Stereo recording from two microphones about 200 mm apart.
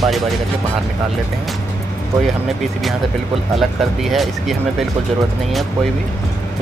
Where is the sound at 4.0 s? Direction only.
Centre (ahead or behind).